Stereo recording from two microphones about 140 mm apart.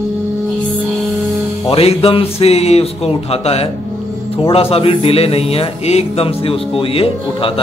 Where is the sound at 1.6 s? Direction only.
45° left (ahead or behind).